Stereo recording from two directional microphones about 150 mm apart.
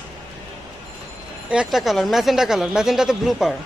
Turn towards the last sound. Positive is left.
turn(degrees=0)  # may be behind; listen again after turning